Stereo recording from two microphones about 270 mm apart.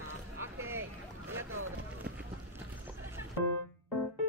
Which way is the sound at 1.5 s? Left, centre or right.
Right.